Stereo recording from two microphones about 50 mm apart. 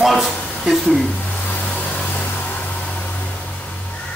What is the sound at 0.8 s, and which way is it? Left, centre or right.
Speech, centre.